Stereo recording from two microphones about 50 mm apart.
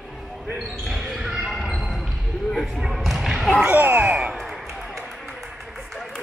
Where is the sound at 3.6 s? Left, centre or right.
Right.